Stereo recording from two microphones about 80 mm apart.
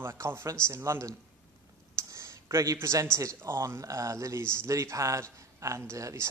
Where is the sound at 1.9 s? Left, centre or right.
Right.